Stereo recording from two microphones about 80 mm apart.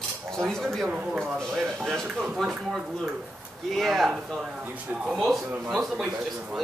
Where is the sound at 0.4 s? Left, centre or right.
Centre.